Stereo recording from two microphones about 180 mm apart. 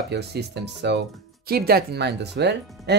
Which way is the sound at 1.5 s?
60° right (ahead or behind).